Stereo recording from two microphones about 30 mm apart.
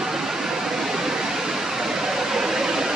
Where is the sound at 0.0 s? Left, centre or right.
Centre.